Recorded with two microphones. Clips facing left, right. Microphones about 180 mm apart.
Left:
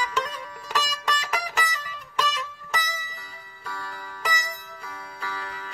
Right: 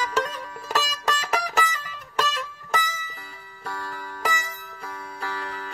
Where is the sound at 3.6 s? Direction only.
45° right (ahead or behind).